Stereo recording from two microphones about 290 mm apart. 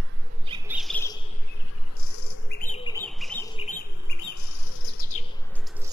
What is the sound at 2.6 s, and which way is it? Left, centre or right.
Bird, left.